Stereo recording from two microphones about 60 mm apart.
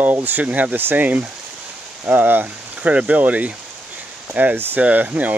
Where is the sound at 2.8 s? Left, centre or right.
Centre.